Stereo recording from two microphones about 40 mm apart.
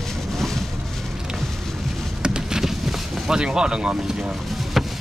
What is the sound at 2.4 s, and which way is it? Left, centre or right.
Vehicle, centre.